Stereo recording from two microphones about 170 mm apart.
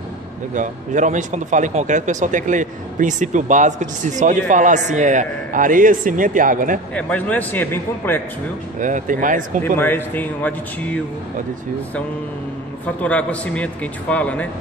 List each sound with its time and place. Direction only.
0.6 s speech: 45° right (ahead or behind)
7.0 s a man's voice: 10° left (ahead or behind)
8.7 s speech: 50° right (ahead or behind)
9.8 s a man's voice: 10° left (ahead or behind)
12.8 s a man's voice: 10° left (ahead or behind)